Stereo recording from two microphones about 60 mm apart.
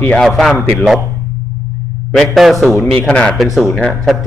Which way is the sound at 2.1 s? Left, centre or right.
Centre.